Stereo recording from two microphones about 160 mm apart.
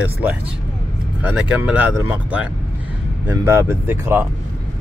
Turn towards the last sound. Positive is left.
turn(degrees=-15)  # may be behind; listen again after turning